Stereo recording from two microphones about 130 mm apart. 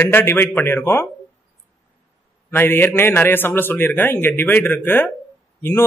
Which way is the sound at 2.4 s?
15° left (ahead or behind).